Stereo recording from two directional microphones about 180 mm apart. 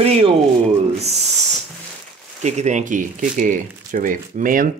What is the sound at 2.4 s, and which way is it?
Speech, 40° right (ahead or behind).